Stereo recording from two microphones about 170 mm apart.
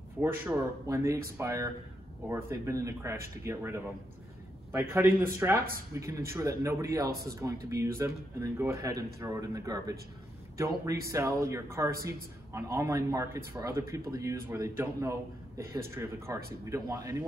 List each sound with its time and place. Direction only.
0.2 s a man's voice: 10° right (ahead or behind)
7.1 s a man's voice: 65° right (ahead or behind)
7.7 s a man's voice: 15° right (ahead or behind)
11.1 s a man's voice: 20° right (ahead or behind)